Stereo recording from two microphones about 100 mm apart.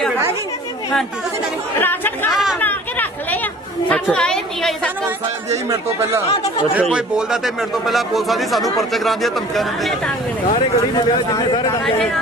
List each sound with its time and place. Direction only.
1.8 s speech: 20° left (ahead or behind)
2.6 s a sound: 15° left (ahead or behind)
3.9 s a woman's voice: 10° left (ahead or behind)
5.7 s speech: 30° right (ahead or behind)
6.7 s a man's voice: 10° right (ahead or behind)
11.0 s speech: 50° left (ahead or behind)
11.8 s a man's voice: 5° left (ahead or behind)